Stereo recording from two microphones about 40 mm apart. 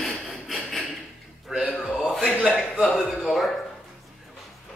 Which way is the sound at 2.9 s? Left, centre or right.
Centre.